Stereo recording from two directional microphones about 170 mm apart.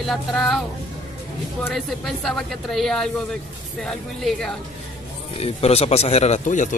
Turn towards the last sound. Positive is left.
turn(degrees=50)  # may be behind; listen again after turning